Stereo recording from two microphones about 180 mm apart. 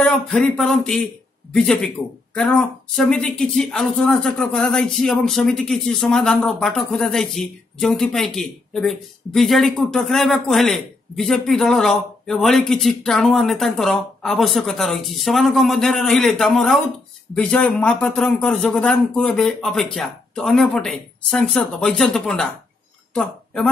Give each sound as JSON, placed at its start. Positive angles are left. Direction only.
{"t": 0.0, "sound": "speech", "side_deg": 5}
{"t": 3.0, "sound": "speech", "side_deg": 5}